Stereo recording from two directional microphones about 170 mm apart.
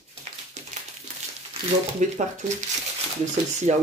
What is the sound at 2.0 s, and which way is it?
Speech, 45° right (ahead or behind).